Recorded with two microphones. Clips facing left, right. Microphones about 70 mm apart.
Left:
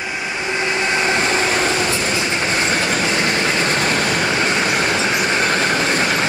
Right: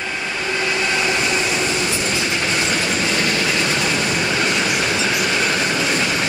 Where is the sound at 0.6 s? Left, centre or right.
Left.